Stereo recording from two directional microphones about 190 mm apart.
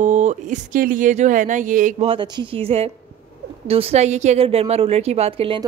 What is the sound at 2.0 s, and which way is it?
A woman's voice, 25° right (ahead or behind).